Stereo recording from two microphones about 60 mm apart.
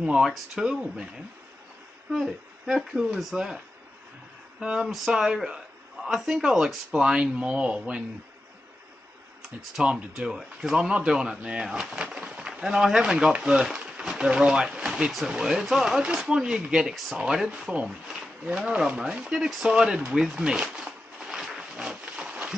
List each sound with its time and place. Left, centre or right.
0.0 s speech: centre
2.1 s speech: centre
9.8 s speech: centre
18.7 s speech: centre
20.2 s a sound: centre